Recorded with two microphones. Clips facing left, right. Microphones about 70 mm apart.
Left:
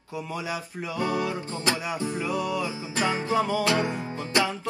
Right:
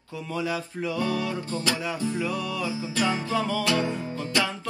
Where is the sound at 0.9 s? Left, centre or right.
Left.